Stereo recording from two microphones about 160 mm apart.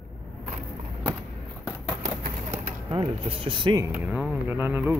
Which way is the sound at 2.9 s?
30° right (ahead or behind).